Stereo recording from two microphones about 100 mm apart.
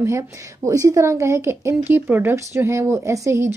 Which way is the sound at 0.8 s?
30° right (ahead or behind).